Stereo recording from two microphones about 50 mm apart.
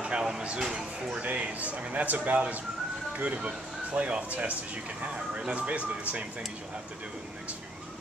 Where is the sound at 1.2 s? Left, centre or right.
Right.